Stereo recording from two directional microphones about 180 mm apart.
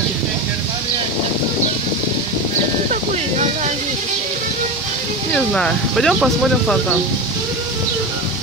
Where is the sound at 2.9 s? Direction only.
40° right (ahead or behind).